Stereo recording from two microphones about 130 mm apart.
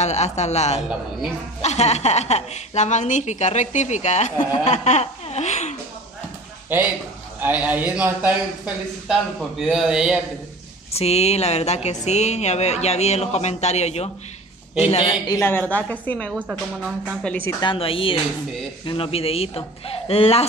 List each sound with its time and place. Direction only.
0.0 s a woman's voice: 60° left (ahead or behind)
6.7 s speech: 15° right (ahead or behind)
9.0 s a man's voice: centre (ahead or behind)
10.9 s a woman's voice: 55° left (ahead or behind)
15.7 s a woman's voice: 10° left (ahead or behind)
16.3 s speech: 10° right (ahead or behind)
17.5 s a woman's voice: 30° left (ahead or behind)
17.7 s a woman's voice: 45° left (ahead or behind)